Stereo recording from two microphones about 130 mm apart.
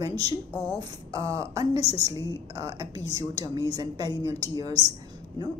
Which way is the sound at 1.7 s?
50° left (ahead or behind).